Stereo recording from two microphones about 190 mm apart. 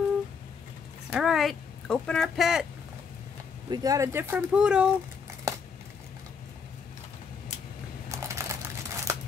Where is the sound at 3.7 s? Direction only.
20° right (ahead or behind).